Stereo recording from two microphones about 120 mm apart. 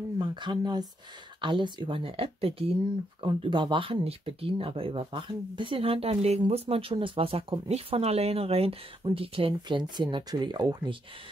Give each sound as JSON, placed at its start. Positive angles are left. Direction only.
{"t": 0.2, "sound": "speech", "side_deg": -40}
{"t": 3.2, "sound": "speech", "side_deg": -40}